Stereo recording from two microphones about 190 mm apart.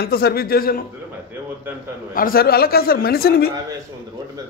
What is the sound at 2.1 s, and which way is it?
A man's voice, 50° left (ahead or behind).